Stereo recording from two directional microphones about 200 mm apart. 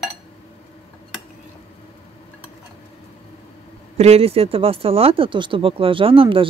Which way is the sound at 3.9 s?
30° right (ahead or behind).